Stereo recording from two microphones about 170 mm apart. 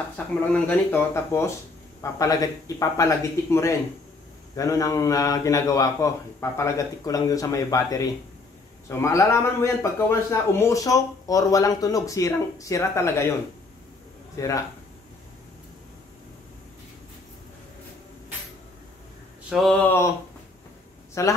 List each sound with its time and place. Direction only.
0.5 s a man's voice: 10° left (ahead or behind)
14.4 s a man's voice: 20° left (ahead or behind)
19.5 s a man's voice: 5° left (ahead or behind)
21.1 s speech: 20° left (ahead or behind)